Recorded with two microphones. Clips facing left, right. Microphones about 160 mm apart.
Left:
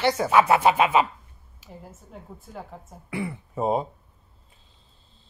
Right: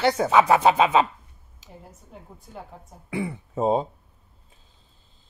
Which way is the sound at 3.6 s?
30° right (ahead or behind).